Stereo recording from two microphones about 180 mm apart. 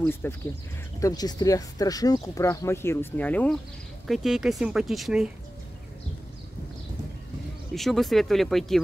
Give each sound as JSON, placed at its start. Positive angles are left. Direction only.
{"t": 0.0, "sound": "speech", "side_deg": 10}
{"t": 4.1, "sound": "speech", "side_deg": 0}
{"t": 7.7, "sound": "speech", "side_deg": 0}